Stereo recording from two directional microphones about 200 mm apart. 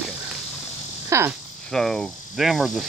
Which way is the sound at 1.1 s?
15° right (ahead or behind).